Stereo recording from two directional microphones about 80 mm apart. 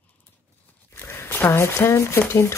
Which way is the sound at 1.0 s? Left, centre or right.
Left.